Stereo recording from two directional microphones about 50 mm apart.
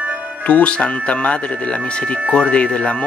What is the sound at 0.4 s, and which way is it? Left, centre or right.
Speech, left.